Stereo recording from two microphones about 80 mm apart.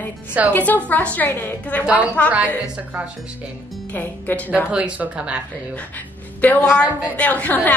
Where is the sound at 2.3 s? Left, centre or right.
Centre.